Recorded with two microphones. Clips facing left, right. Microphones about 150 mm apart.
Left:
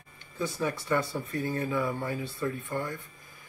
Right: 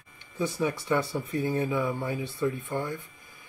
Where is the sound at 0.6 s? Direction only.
15° right (ahead or behind).